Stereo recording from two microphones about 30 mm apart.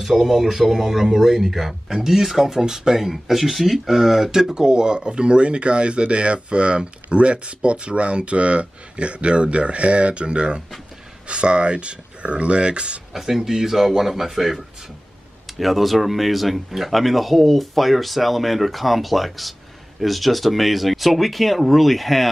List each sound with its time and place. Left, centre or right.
0.0 s speech: centre
1.9 s speech: centre
2.6 s speech: right
4.3 s speech: centre; by 13.0 s right
13.1 s speech: centre